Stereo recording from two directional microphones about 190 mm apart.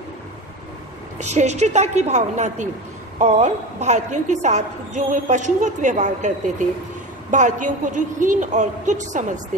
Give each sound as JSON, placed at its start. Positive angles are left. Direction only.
{"t": 1.1, "sound": "a woman's voice", "side_deg": -35}